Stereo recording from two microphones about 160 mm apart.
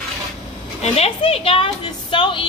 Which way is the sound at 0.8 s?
40° left (ahead or behind).